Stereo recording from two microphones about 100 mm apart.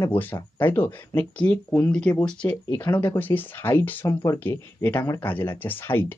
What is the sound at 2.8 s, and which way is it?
Speech, 20° left (ahead or behind).